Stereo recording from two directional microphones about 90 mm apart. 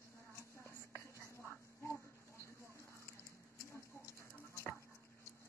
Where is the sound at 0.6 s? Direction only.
30° left (ahead or behind).